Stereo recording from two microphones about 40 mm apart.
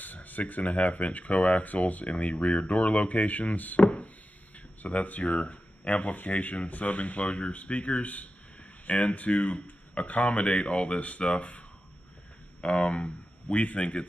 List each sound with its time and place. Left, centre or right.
0.0 s speech: left
12.6 s speech: left